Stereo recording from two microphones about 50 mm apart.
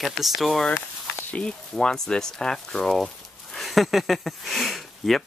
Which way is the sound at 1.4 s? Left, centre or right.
Centre.